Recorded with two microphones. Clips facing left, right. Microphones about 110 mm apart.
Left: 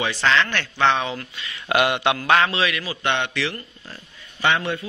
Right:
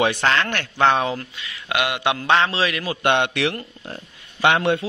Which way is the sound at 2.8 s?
55° right (ahead or behind).